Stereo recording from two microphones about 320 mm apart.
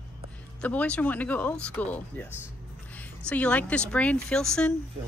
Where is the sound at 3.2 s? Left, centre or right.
Centre.